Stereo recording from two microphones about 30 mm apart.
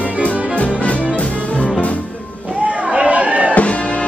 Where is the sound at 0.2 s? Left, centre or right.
Left.